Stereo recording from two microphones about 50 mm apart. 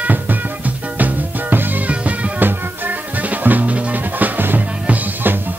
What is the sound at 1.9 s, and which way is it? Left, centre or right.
Music, right.